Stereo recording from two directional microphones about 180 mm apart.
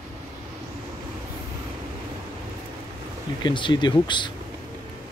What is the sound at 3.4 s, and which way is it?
Speech, 25° left (ahead or behind).